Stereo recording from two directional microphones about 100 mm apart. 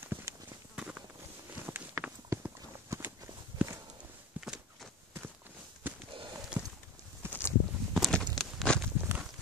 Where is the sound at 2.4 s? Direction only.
15° right (ahead or behind).